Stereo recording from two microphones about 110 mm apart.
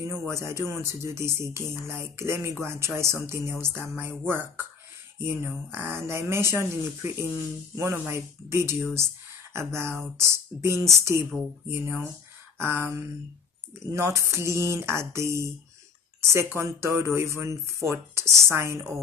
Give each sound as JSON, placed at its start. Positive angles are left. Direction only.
{"t": 0.3, "sound": "speech", "side_deg": -25}